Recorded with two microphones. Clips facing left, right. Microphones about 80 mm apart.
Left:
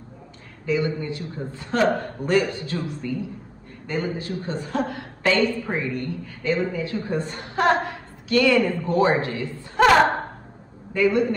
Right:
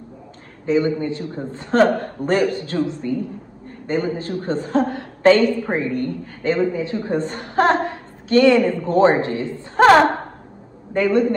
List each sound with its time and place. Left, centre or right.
0.7 s a woman's voice: right
6.7 s a woman's voice: right
10.9 s a man's voice: right